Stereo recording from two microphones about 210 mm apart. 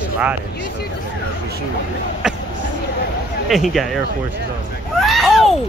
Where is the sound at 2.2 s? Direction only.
5° right (ahead or behind).